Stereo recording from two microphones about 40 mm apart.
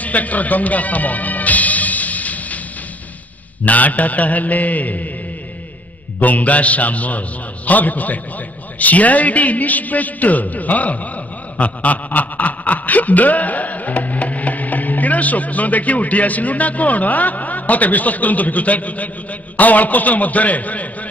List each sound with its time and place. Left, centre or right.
0.0 s music: left
3.6 s a man's voice: left
6.1 s a man's voice: left